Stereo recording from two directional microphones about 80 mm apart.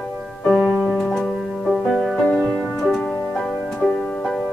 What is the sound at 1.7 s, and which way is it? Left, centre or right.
Music, centre.